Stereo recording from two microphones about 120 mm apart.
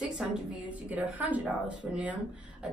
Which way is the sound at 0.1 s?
5° right (ahead or behind).